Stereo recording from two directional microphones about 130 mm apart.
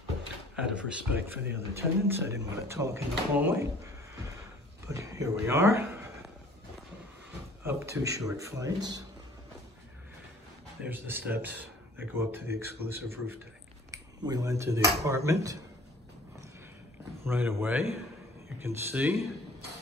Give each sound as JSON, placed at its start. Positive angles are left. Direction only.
{"t": 0.6, "sound": "speech", "side_deg": -10}
{"t": 4.8, "sound": "speech", "side_deg": -25}
{"t": 7.6, "sound": "speech", "side_deg": -20}
{"t": 10.8, "sound": "speech", "side_deg": -15}
{"t": 17.2, "sound": "speech", "side_deg": -15}